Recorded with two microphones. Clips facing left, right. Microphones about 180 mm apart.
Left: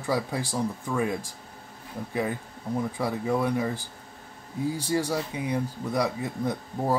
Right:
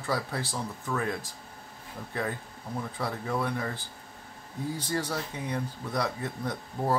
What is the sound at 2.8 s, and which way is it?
Speech, 15° left (ahead or behind).